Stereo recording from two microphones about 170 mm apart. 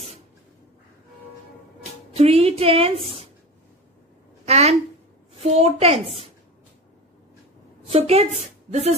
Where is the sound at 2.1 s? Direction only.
35° right (ahead or behind).